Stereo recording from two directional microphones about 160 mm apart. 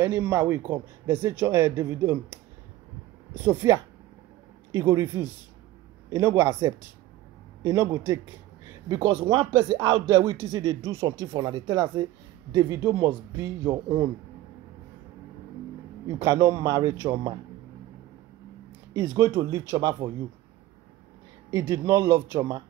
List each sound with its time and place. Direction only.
0.0 s speech: 15° right (ahead or behind)
16.2 s speech: 20° right (ahead or behind)
18.9 s speech: 25° right (ahead or behind)
21.5 s speech: 20° right (ahead or behind)